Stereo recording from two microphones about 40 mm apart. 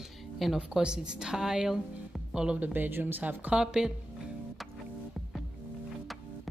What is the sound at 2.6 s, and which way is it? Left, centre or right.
Speech, right.